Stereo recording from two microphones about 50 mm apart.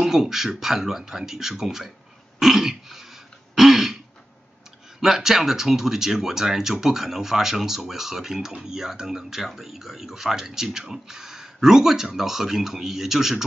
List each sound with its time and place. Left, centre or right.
0.0 s speech: centre
2.3 s throat clearing: centre
5.0 s speech: centre